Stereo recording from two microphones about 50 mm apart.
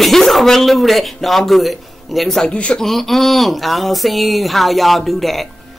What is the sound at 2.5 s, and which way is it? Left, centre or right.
Speech, left.